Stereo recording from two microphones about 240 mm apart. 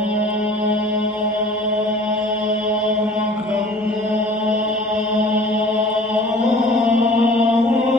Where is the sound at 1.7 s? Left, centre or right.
Centre.